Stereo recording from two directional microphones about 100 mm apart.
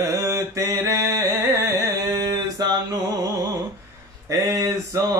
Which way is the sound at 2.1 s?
40° right (ahead or behind).